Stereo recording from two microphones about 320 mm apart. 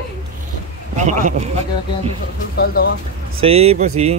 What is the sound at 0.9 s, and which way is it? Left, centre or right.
Speech, right.